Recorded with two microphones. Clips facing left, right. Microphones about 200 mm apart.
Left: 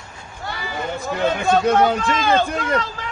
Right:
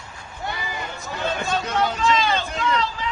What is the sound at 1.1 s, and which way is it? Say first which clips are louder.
Speech: left 7 dB; 55° left (ahead or behind).